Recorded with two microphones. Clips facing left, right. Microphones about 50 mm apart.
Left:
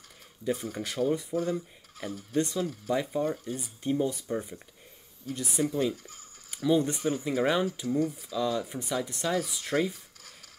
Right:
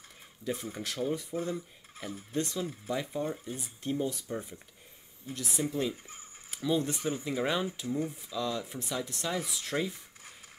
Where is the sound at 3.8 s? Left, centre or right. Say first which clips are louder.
Left 4 dB; centre.